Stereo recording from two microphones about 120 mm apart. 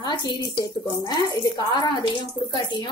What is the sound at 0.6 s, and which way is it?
A woman's voice, 30° left (ahead or behind).